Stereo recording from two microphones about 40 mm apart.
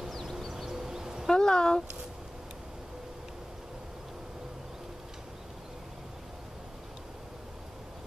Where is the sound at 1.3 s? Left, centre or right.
Centre.